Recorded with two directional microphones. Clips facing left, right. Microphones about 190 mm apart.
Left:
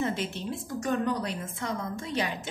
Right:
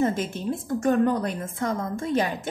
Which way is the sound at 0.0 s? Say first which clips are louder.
Right 6 dB; 45° right (ahead or behind).